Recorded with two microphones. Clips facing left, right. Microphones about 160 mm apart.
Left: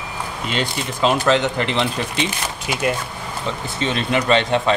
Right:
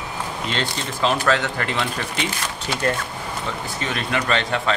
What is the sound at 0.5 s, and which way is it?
Speech, 15° left (ahead or behind).